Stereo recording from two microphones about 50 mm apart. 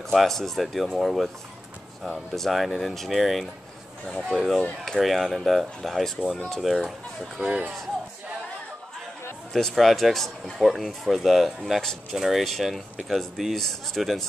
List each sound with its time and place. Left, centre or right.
0.1 s speech: centre
2.3 s speech: centre
7.3 s speech: right
9.5 s speech: centre